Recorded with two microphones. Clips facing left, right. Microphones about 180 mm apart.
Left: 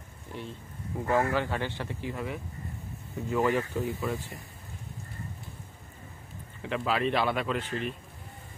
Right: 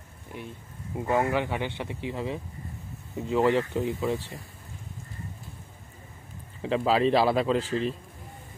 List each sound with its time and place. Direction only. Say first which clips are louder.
1.0 s speech: right 1 dB; 20° right (ahead or behind)
6.6 s speech: right 5 dB; 30° right (ahead or behind)